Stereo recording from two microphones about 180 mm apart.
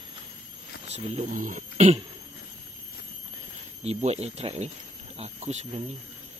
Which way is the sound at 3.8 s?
35° right (ahead or behind).